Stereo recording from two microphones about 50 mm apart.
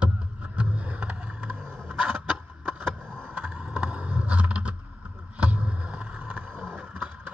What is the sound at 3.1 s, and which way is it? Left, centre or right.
Vehicle, centre.